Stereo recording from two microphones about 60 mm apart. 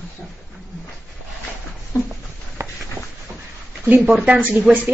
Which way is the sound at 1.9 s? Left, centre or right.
Left.